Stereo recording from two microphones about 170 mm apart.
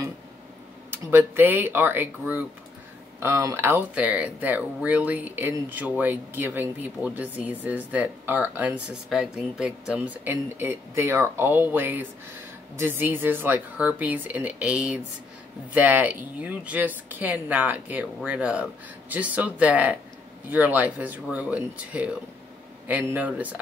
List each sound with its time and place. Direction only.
0.8 s speech: 15° right (ahead or behind)